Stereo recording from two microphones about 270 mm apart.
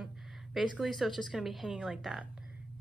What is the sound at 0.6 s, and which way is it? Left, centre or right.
Speech, centre.